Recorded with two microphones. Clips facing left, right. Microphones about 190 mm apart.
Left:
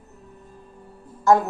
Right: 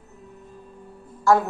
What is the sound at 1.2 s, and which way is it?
Speech, 20° left (ahead or behind).